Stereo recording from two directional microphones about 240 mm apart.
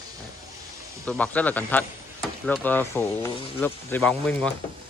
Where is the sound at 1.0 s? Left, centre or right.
Centre.